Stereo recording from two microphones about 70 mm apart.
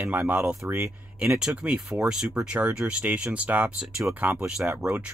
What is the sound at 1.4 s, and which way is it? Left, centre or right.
Speech, centre.